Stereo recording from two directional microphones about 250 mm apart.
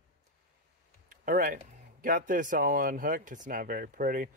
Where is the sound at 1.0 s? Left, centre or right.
Right.